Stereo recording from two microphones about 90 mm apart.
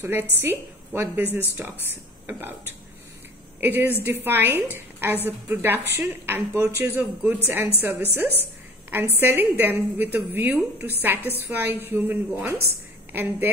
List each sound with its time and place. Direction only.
0.0 s a woman's voice: 25° right (ahead or behind)